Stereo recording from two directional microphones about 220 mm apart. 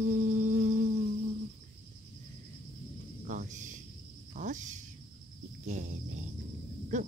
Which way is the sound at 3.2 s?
35° right (ahead or behind).